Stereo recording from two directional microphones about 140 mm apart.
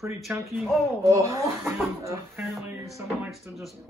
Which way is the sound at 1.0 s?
20° right (ahead or behind).